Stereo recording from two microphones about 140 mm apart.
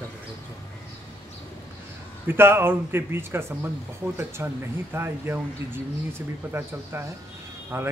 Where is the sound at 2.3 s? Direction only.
15° right (ahead or behind).